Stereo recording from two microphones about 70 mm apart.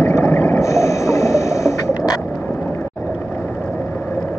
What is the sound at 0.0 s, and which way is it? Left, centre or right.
Music, left.